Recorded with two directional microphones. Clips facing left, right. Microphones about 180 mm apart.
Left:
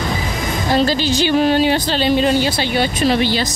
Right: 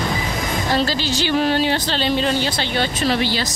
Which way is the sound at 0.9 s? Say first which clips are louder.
Left 5 dB; 15° left (ahead or behind).